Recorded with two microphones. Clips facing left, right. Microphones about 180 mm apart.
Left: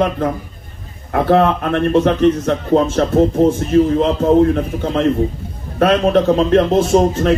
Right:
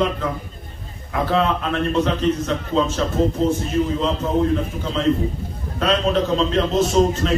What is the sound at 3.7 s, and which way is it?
Music, 65° left (ahead or behind).